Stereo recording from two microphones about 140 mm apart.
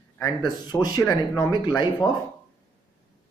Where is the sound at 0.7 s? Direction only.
25° left (ahead or behind).